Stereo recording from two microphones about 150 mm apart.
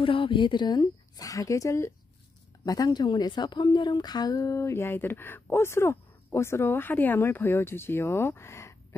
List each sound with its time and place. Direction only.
0.0 s a woman's voice: 35° left (ahead or behind); by 8.7 s 20° left (ahead or behind)